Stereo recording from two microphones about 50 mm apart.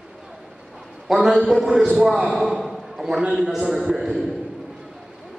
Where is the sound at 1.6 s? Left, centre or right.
Centre.